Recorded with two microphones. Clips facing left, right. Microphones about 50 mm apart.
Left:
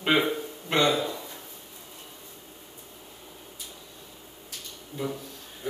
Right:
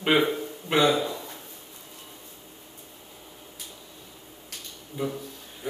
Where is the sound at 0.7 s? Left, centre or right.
Centre.